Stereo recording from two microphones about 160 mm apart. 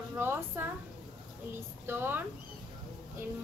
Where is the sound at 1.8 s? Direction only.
15° right (ahead or behind).